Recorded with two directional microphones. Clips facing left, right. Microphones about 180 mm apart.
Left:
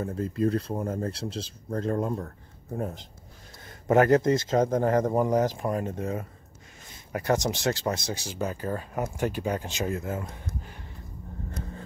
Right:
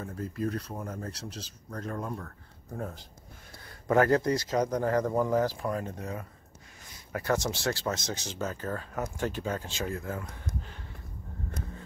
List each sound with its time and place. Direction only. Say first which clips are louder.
0.0 s speech: left 6 dB; 25° left (ahead or behind)